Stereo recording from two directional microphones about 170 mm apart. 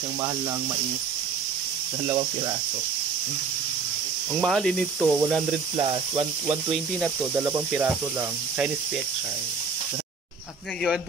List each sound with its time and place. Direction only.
4.4 s snake: centre (ahead or behind)
5.8 s speech: 25° right (ahead or behind)
7.3 s speech: 15° right (ahead or behind)